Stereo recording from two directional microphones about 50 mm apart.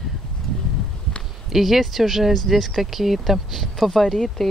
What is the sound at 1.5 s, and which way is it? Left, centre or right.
Speech, centre.